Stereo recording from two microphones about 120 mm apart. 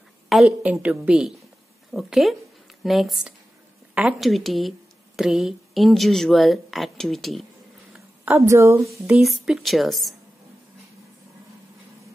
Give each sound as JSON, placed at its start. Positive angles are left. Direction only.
{"t": 0.3, "sound": "a woman's voice", "side_deg": -5}
{"t": 8.4, "sound": "a woman's voice", "side_deg": -20}
{"t": 9.0, "sound": "speech", "side_deg": -5}